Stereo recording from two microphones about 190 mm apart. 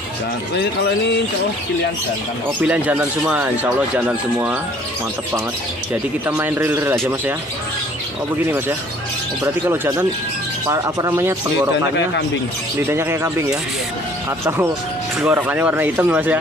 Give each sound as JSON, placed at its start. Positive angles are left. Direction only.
{"t": 2.6, "sound": "speech", "side_deg": -10}
{"t": 6.2, "sound": "speech", "side_deg": -10}
{"t": 8.5, "sound": "speech", "side_deg": -10}
{"t": 12.8, "sound": "speech", "side_deg": -15}
{"t": 15.1, "sound": "speech", "side_deg": -10}